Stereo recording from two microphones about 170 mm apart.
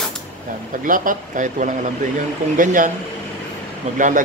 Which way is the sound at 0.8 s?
50° right (ahead or behind).